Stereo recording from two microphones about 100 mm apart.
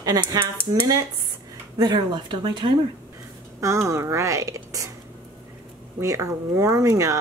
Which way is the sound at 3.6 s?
30° right (ahead or behind).